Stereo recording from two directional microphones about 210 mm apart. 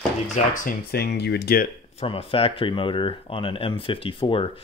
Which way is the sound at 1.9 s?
25° left (ahead or behind).